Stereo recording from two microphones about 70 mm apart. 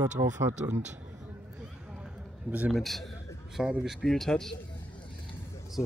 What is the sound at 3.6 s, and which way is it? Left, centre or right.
Speech, centre.